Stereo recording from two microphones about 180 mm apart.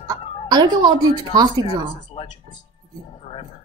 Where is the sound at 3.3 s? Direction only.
30° left (ahead or behind).